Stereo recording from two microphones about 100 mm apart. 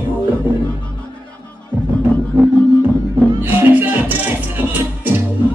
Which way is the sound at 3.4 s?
20° right (ahead or behind).